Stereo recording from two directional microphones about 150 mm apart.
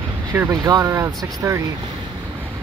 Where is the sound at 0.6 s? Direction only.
25° right (ahead or behind).